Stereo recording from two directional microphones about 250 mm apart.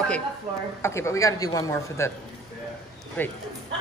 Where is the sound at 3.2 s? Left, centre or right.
Centre.